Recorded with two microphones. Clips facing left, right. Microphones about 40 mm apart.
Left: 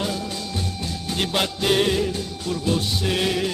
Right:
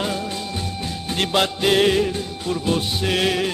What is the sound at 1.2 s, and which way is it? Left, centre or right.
Music, centre.